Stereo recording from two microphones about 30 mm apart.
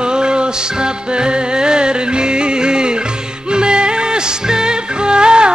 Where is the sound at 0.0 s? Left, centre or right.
Right.